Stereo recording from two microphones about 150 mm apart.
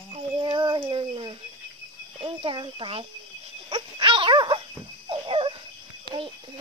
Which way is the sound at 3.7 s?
35° right (ahead or behind).